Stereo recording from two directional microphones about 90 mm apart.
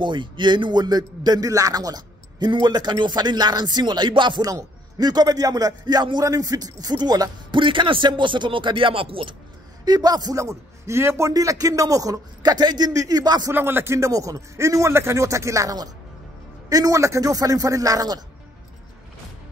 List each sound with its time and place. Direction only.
0.0 s a man's voice: 60° right (ahead or behind)
4.5 s a man's voice: 45° right (ahead or behind)
7.6 s speech: 70° right (ahead or behind); by 9.3 s 90° right
9.8 s a man's voice: 50° right (ahead or behind)
10.3 s a man's voice: 35° right (ahead or behind); by 13.5 s 50° right (ahead or behind)
13.5 s a man's voice: 25° right (ahead or behind); by 18.2 s 45° right (ahead or behind)